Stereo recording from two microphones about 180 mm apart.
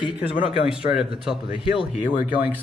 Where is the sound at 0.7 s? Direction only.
5° right (ahead or behind).